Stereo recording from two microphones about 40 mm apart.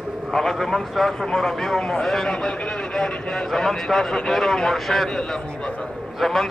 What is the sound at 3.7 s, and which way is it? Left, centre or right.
Speech, centre.